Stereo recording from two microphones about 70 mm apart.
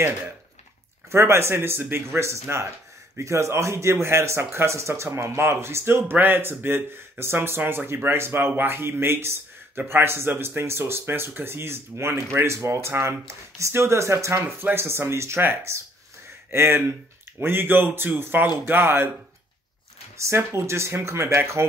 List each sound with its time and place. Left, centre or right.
1.1 s speech: right
20.2 s speech: right